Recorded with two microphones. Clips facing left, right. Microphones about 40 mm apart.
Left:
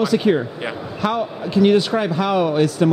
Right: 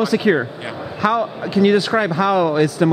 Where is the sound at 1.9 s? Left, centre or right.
Right.